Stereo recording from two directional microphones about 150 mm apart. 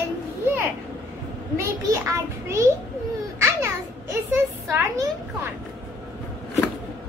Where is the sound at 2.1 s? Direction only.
20° right (ahead or behind).